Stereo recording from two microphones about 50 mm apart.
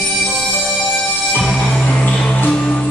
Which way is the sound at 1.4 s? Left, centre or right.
Centre.